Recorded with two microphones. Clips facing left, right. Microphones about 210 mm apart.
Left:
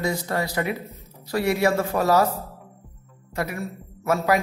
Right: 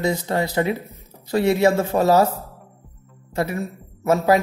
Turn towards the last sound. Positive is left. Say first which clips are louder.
# right 4 dB
turn(degrees=-25)  # may be behind; listen again after turning